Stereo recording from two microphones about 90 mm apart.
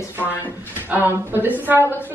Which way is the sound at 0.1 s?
20° right (ahead or behind).